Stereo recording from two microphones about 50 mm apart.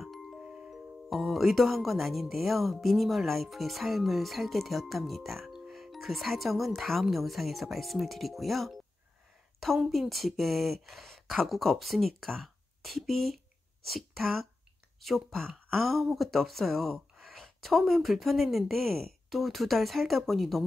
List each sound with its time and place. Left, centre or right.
0.0 s music: centre
0.4 s music: centre
0.7 s speech: centre
9.8 s speech: centre